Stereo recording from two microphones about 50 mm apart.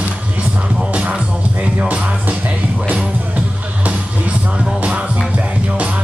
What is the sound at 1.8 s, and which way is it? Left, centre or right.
Music, right.